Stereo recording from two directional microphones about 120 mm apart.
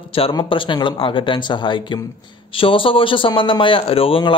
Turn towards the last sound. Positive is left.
turn(degrees=50)  # may be behind; listen again after turning